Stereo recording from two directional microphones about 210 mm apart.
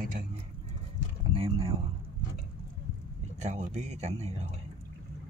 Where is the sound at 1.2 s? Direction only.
25° right (ahead or behind).